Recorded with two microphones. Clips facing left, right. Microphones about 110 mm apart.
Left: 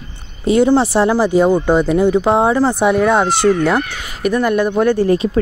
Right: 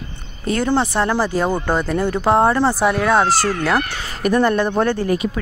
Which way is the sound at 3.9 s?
15° left (ahead or behind).